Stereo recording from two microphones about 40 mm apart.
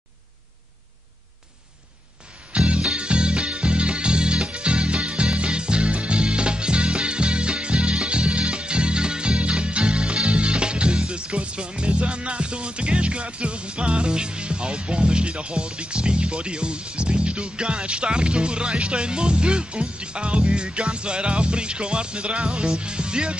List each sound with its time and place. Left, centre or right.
2.5 s music: right